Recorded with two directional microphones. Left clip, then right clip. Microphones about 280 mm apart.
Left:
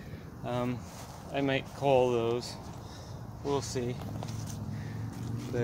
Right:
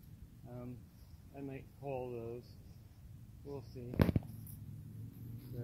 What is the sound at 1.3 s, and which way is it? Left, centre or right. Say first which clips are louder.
Speech: left 18 dB; centre.